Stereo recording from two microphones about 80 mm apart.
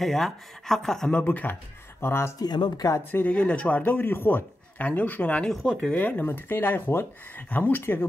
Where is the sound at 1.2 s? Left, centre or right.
Left.